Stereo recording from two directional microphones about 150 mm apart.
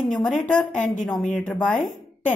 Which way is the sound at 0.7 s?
55° left (ahead or behind).